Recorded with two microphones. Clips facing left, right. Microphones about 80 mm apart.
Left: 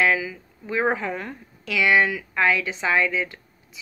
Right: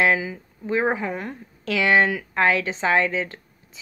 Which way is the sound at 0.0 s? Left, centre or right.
Right.